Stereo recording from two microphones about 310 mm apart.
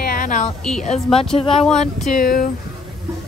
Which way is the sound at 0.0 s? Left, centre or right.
Left.